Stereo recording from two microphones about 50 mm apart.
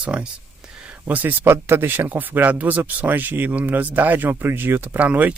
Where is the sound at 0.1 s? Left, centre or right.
Centre.